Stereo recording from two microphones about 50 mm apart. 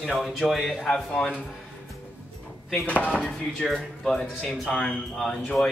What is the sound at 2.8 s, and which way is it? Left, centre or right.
Speech, left.